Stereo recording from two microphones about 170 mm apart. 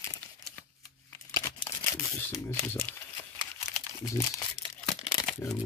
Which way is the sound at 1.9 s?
20° left (ahead or behind).